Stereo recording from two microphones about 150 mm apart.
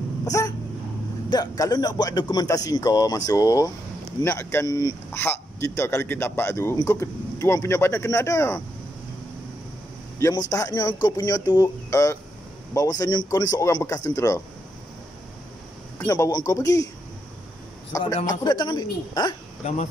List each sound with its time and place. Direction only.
0.2 s a sound: 20° left (ahead or behind)
1.3 s speech: 25° left (ahead or behind)
10.1 s a man's voice: 20° left (ahead or behind)
16.1 s speech: 25° left (ahead or behind)
18.0 s speech: 30° left (ahead or behind)